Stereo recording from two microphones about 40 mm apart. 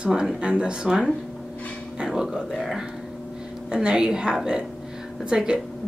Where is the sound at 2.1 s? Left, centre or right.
Centre.